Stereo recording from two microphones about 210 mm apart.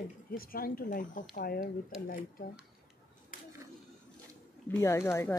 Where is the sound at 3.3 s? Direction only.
40° left (ahead or behind).